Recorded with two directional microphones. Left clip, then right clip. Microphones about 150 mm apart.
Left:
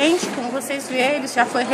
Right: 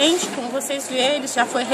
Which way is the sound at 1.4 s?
15° right (ahead or behind).